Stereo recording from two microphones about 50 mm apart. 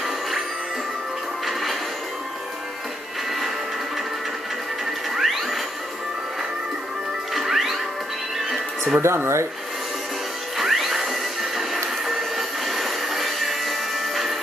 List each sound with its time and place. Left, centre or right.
1.4 s music: centre
5.1 s mechanisms: centre
7.3 s music: centre
9.0 s speech: right
10.6 s music: centre